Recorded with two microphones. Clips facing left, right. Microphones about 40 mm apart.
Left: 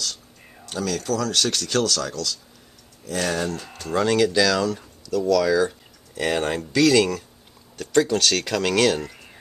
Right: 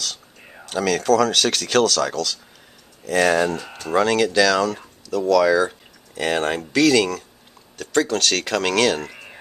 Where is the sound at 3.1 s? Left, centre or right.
Right.